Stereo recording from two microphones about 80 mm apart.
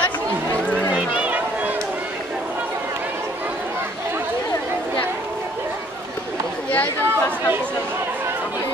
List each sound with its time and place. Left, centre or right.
0.9 s run: centre
6.7 s chatter: left